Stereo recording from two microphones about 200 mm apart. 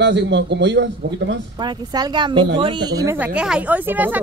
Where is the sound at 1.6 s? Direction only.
20° right (ahead or behind).